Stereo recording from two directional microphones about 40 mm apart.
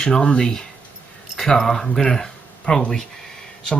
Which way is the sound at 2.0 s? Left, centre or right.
Centre.